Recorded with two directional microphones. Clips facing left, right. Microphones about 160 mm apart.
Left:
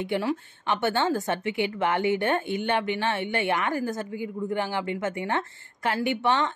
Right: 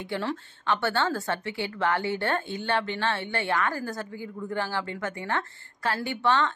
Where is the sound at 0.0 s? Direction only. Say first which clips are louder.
Left 4 dB; 15° left (ahead or behind).